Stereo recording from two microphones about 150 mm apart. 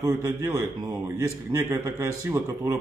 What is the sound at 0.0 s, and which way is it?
A man's voice, 20° right (ahead or behind).